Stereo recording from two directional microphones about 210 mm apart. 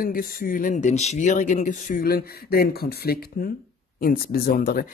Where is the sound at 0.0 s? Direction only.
45° left (ahead or behind).